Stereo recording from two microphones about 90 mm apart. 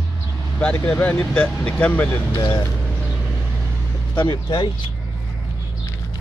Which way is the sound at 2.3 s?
50° left (ahead or behind).